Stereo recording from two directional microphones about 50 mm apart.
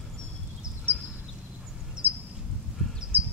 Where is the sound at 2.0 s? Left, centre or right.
Right.